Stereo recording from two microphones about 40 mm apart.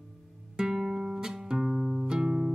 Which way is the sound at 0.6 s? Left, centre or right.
Centre.